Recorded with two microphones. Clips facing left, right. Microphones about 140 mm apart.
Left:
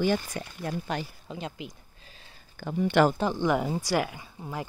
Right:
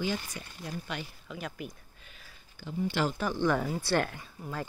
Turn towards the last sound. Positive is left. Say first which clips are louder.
# left 2 dB
turn(degrees=20)  # may be behind; listen again after turning